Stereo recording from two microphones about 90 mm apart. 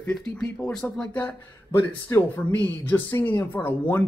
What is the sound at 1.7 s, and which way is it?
Speech, 25° left (ahead or behind).